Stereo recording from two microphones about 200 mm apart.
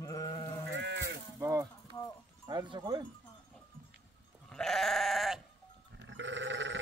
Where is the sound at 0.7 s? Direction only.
60° right (ahead or behind).